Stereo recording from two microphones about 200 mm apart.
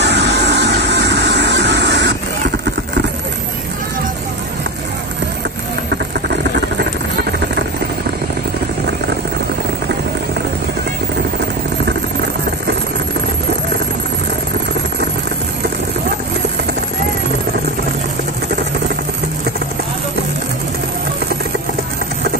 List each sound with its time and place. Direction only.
0.0 s vehicle: 55° right (ahead or behind)